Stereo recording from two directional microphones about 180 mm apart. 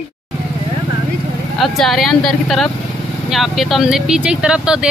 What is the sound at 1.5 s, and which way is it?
Speech, centre (ahead or behind).